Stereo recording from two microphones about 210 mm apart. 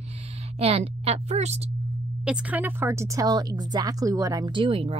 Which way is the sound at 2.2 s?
5° right (ahead or behind).